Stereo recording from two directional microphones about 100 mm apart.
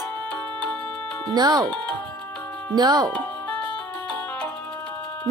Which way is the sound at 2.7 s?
45° right (ahead or behind).